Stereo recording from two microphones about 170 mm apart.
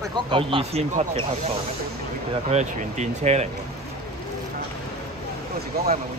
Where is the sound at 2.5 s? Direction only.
45° right (ahead or behind).